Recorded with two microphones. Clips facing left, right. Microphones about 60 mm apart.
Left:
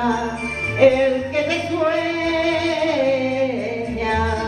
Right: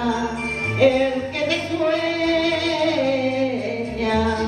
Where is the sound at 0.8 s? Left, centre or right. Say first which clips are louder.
Left 3 dB; centre.